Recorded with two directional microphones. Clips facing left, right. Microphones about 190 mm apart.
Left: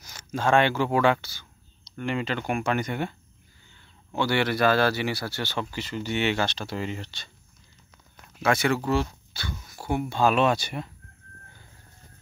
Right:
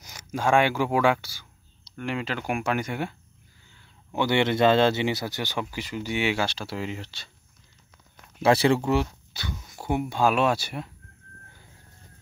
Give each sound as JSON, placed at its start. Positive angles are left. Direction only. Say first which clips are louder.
{"t": 0.0, "sound": "speech", "louder": "even", "side_deg": -15}
{"t": 4.1, "sound": "speech", "louder": "right 2 dB", "side_deg": -20}
{"t": 8.4, "sound": "speech", "louder": "right 4 dB", "side_deg": -30}
{"t": 8.9, "sound": "speech", "louder": "right 1 dB", "side_deg": -15}